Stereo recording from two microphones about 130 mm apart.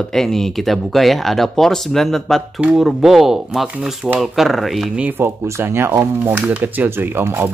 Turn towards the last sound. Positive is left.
turn(degrees=-15)  # may be behind; listen again after turning